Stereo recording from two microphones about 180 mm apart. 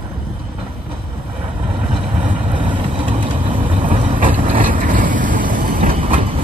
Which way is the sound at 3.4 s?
40° right (ahead or behind).